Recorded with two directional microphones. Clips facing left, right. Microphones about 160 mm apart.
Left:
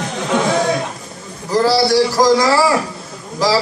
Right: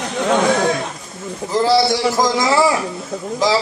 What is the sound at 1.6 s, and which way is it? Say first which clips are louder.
A man's voice: left 2 dB; 20° right (ahead or behind).